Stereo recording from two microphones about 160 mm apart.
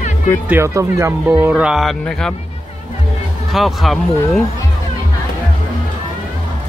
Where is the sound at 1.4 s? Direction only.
5° right (ahead or behind).